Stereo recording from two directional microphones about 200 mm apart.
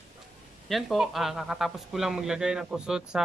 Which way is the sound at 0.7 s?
Centre (ahead or behind).